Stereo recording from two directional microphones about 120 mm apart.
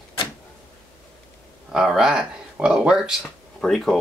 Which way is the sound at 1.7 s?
5° right (ahead or behind).